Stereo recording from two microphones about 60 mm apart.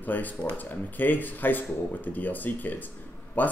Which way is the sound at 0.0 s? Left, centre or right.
Left.